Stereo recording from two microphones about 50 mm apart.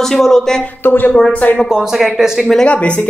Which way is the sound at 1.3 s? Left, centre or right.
Left.